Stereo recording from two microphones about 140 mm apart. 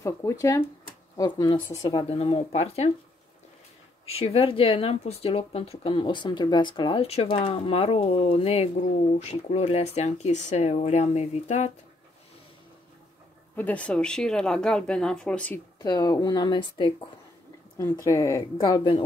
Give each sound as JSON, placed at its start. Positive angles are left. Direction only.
{"t": 0.0, "sound": "speech", "side_deg": 20}
{"t": 2.0, "sound": "speech", "side_deg": 45}
{"t": 4.0, "sound": "speech", "side_deg": 45}
{"t": 13.6, "sound": "speech", "side_deg": 10}
{"t": 15.8, "sound": "speech", "side_deg": 30}
{"t": 17.9, "sound": "speech", "side_deg": 20}